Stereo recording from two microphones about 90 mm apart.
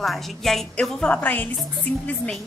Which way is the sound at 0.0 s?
Centre (ahead or behind).